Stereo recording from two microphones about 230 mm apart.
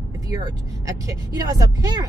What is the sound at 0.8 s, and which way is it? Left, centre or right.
Speech, centre.